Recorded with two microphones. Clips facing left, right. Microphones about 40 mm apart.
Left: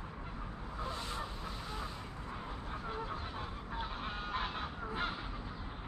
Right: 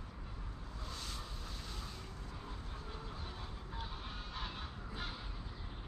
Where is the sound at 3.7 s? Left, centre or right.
Left.